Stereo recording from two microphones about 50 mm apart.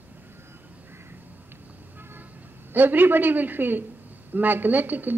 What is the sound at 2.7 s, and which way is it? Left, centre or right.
A woman's voice, right.